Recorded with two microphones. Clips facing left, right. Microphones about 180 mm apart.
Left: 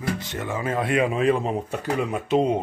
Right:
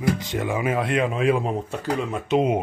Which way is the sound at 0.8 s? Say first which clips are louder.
Left 5 dB; 5° left (ahead or behind).